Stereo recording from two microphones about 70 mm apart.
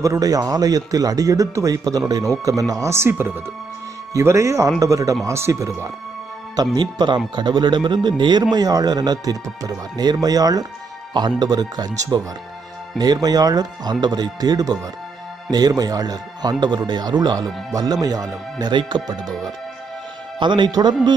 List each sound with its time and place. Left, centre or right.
0.0 s a man's voice: right
2.5 s speech: right
2.9 s speech: right
6.5 s speech: right
11.1 s speech: right
14.0 s speech: right
15.8 s speech: right
18.0 s speech: right
20.4 s speech: right